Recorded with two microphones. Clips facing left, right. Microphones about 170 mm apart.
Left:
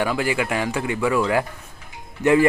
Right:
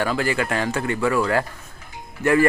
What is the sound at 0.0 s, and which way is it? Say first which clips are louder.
Speech: even; 10° left (ahead or behind).